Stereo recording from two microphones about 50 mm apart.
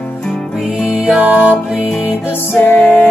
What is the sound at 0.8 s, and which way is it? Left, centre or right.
Music, left.